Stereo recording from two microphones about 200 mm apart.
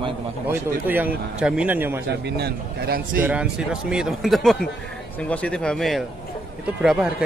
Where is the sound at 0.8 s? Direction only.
10° right (ahead or behind).